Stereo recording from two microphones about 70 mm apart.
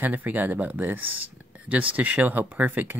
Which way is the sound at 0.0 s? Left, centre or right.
Right.